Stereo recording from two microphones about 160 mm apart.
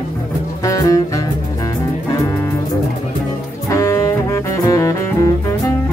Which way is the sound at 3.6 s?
20° left (ahead or behind).